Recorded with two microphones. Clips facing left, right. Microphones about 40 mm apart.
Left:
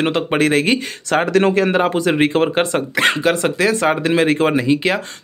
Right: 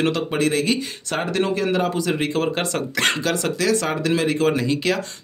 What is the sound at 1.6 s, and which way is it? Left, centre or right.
Speech, left.